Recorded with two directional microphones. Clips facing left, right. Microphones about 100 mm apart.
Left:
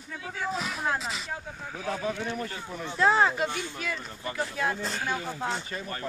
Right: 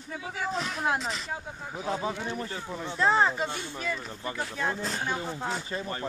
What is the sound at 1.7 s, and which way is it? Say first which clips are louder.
Speech: even; 20° right (ahead or behind).